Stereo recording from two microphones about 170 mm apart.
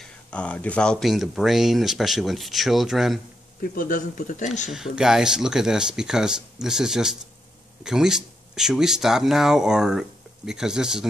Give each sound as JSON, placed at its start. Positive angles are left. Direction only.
{"t": 0.0, "sound": "speech", "side_deg": 5}
{"t": 3.7, "sound": "speech", "side_deg": 55}
{"t": 4.6, "sound": "speech", "side_deg": -5}